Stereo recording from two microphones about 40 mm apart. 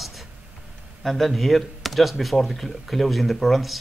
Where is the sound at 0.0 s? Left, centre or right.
Centre.